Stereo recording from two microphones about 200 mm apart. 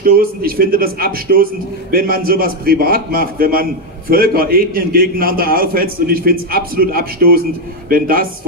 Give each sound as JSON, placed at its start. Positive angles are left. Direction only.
{"t": 0.0, "sound": "a man's voice", "side_deg": -50}